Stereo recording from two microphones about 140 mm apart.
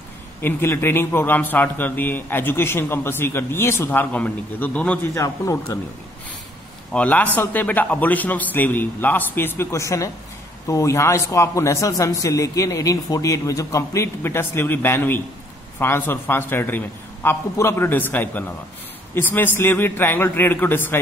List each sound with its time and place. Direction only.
0.4 s a man's voice: 15° left (ahead or behind)
5.1 s a man's voice: 25° left (ahead or behind)
6.9 s a man's voice: 10° left (ahead or behind)